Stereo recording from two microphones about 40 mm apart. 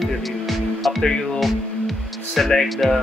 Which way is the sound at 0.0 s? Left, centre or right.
Centre.